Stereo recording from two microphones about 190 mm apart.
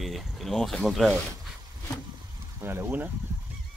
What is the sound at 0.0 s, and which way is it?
Speech, centre (ahead or behind).